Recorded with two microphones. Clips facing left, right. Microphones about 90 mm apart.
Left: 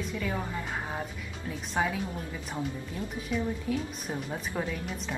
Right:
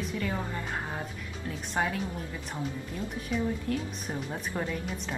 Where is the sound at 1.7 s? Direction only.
Centre (ahead or behind).